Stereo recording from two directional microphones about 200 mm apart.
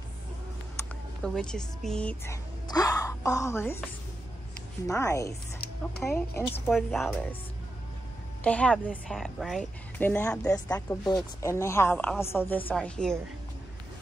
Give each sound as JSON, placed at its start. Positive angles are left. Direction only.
{"t": 1.2, "sound": "a woman's voice", "side_deg": 5}
{"t": 2.7, "sound": "speech", "side_deg": 20}
{"t": 4.8, "sound": "a woman's voice", "side_deg": 15}
{"t": 6.7, "sound": "a woman's voice", "side_deg": 0}
{"t": 8.5, "sound": "a woman's voice", "side_deg": 5}